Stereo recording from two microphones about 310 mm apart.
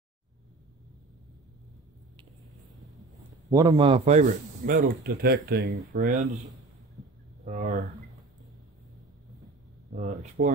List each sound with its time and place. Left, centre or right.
3.5 s a man's voice: centre
7.4 s a man's voice: right
9.9 s a man's voice: right